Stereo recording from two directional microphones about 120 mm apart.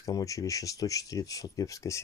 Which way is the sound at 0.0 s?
30° left (ahead or behind).